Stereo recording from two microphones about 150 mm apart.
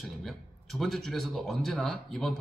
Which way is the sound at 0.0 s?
Centre (ahead or behind).